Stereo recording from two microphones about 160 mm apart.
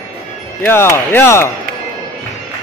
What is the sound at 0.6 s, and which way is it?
Speech, 15° left (ahead or behind).